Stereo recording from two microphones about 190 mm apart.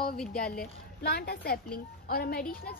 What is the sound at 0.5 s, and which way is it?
A woman's voice, 55° left (ahead or behind).